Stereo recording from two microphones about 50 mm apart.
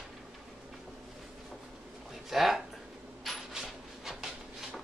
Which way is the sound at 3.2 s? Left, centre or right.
Centre.